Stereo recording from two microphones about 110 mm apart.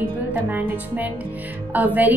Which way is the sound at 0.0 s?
15° right (ahead or behind).